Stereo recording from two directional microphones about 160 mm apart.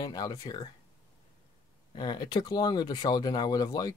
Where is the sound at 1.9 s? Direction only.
30° left (ahead or behind).